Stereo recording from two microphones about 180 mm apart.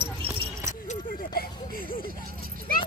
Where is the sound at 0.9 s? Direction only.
50° left (ahead or behind).